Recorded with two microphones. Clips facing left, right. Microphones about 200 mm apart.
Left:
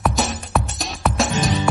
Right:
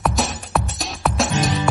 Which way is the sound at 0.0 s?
Centre (ahead or behind).